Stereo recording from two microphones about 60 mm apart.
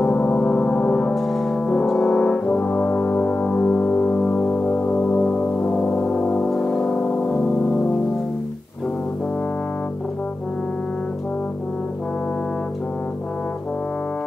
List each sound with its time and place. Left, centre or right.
0.0 s music: left
1.1 s brass instrument: centre; by 4.2 s left
4.3 s music: left
6.2 s gong: centre